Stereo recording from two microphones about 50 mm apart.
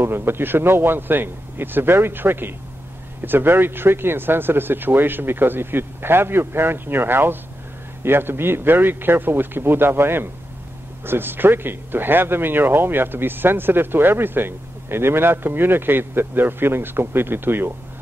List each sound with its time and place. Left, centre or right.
0.0 s speech: right